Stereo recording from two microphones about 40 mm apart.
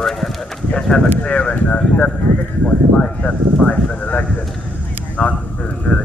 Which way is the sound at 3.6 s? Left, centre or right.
Left.